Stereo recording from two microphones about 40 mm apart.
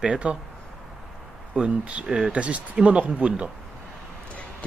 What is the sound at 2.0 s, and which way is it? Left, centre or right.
Speech, centre.